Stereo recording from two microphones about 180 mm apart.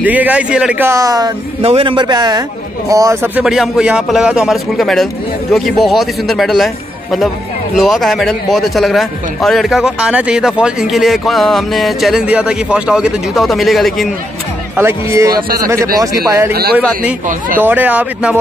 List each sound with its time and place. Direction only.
0.0 s a man's voice: 10° right (ahead or behind)
3.4 s a man's voice: centre (ahead or behind)
14.8 s speech: 15° right (ahead or behind)
17.6 s speech: 10° right (ahead or behind)